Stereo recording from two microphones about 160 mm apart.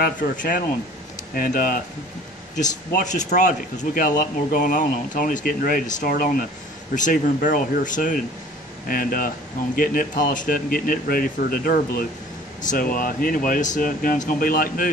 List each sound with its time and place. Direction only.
0.0 s speech: 60° left (ahead or behind)
2.5 s speech: 50° left (ahead or behind)